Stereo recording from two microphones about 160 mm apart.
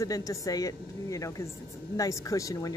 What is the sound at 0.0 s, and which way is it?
Speech, 20° left (ahead or behind).